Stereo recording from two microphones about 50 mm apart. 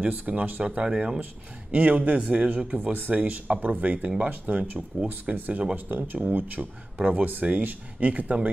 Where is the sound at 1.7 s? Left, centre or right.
Right.